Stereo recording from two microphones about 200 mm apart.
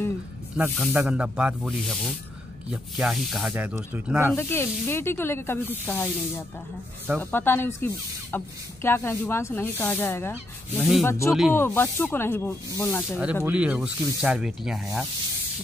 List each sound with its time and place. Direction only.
0.6 s speech: 5° right (ahead or behind)
4.4 s speech: 10° left (ahead or behind)
10.8 s speech: centre (ahead or behind)
11.1 s speech: 15° left (ahead or behind)
13.2 s speech: 5° right (ahead or behind)